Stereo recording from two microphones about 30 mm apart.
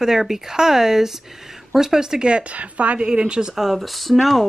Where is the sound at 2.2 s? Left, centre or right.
Right.